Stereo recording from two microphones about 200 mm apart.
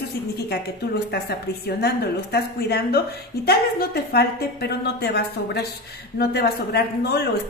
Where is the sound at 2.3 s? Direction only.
55° left (ahead or behind).